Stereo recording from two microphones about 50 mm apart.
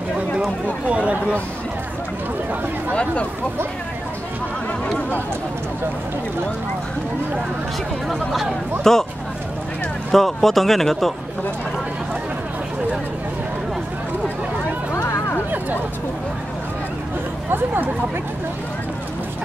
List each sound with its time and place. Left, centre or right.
0.8 s speech: right
2.9 s speech: left
8.1 s speech: centre
10.1 s speech: centre
15.0 s a sound: left